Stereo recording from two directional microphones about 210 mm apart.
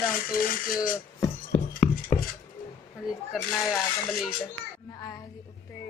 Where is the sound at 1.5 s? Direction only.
30° left (ahead or behind).